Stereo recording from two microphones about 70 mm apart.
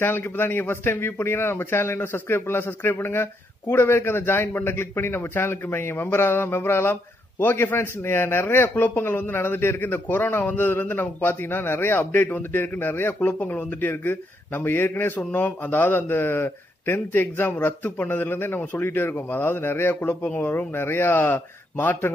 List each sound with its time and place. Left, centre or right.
0.0 s a man's voice: left
20.7 s speech: left